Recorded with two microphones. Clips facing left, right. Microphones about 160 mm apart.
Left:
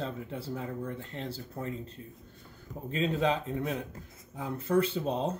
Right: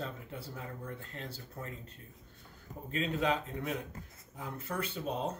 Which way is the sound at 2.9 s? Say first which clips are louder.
Left 4 dB; 30° left (ahead or behind).